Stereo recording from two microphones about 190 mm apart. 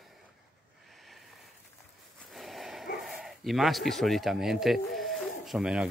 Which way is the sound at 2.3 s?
Centre (ahead or behind).